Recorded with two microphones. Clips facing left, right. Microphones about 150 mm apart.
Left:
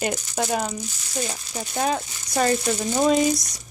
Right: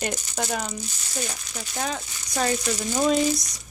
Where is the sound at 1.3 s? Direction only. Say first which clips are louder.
Left 5 dB; 30° left (ahead or behind).